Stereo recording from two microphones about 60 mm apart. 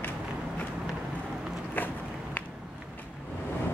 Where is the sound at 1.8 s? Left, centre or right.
Left.